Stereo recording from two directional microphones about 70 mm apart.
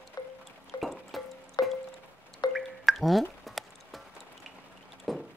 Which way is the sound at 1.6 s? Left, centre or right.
Left.